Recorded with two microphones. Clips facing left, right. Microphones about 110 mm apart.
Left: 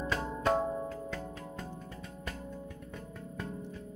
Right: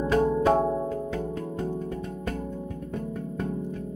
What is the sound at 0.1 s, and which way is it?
Music, 50° right (ahead or behind).